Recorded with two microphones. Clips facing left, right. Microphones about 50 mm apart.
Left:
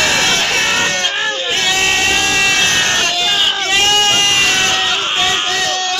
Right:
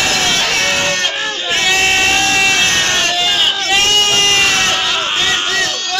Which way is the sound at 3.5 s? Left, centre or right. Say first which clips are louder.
Right 1 dB; centre.